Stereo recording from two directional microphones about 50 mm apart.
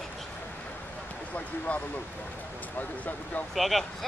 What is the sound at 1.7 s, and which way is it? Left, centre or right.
Speech, left.